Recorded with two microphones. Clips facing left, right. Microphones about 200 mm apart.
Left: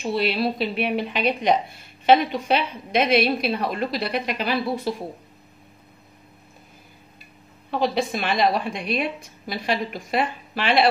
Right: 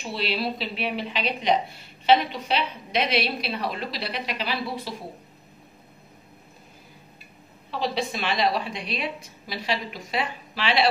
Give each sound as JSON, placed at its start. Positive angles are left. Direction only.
{"t": 0.1, "sound": "a woman's voice", "side_deg": 50}
{"t": 7.7, "sound": "a woman's voice", "side_deg": 50}